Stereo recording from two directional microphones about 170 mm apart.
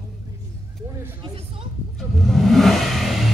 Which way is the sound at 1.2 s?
30° right (ahead or behind).